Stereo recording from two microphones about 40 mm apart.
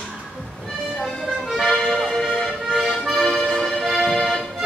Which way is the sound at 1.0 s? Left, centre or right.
Centre.